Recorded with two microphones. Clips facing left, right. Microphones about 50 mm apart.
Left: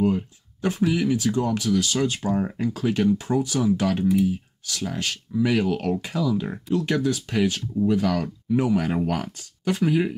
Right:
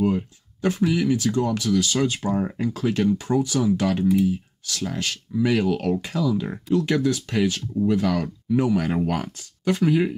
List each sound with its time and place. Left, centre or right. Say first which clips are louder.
0.0 s speech: even; centre